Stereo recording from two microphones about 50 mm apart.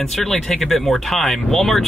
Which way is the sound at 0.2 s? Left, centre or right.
Centre.